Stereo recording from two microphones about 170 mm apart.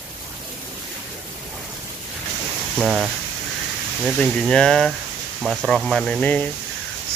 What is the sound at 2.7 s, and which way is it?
Speech, centre (ahead or behind).